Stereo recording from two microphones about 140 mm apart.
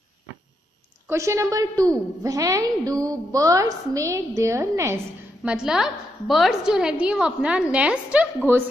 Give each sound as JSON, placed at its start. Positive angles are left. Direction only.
{"t": 1.0, "sound": "a woman's voice", "side_deg": -20}
{"t": 5.4, "sound": "a woman's voice", "side_deg": -5}